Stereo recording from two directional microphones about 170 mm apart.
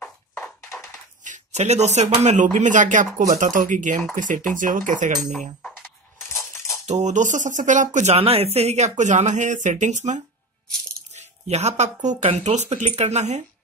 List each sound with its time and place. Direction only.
0.0 s a sound: 10° left (ahead or behind)
1.2 s speech: 45° right (ahead or behind)
6.1 s coin: 15° left (ahead or behind)
6.9 s speech: 45° right (ahead or behind)